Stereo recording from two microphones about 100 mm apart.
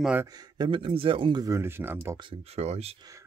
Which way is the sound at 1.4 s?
30° right (ahead or behind).